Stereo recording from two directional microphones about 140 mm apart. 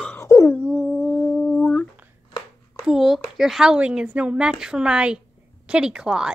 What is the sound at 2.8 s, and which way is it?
A woman's voice, centre (ahead or behind).